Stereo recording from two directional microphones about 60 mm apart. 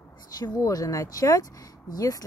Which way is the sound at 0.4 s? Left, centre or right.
Left.